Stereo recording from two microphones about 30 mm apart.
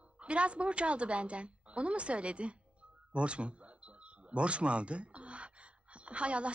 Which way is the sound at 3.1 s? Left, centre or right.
Right.